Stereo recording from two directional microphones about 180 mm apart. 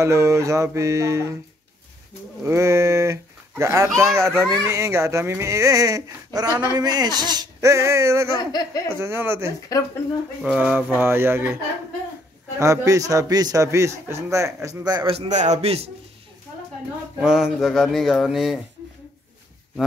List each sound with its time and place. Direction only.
0.0 s speech: 15° right (ahead or behind)
2.4 s speech: 15° right (ahead or behind)
8.4 s speech: 20° left (ahead or behind)
8.8 s speech: 15° right (ahead or behind)
9.7 s speech: 20° left (ahead or behind)
10.4 s speech: 5° right (ahead or behind)
12.5 s a man's voice: 15° right (ahead or behind)
15.1 s a man's voice: 40° right (ahead or behind)
17.2 s speech: 5° right (ahead or behind)